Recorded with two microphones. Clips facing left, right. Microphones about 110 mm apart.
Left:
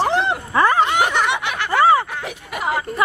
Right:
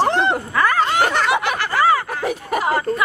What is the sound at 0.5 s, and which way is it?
Speech, 25° left (ahead or behind).